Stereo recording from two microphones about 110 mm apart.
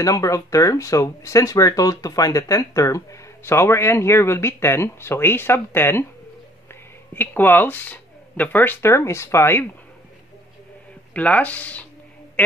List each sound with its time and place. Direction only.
0.0 s speech: 30° left (ahead or behind)
11.1 s speech: 15° left (ahead or behind)